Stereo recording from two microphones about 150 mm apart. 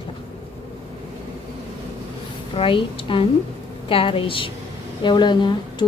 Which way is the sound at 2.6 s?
35° left (ahead or behind).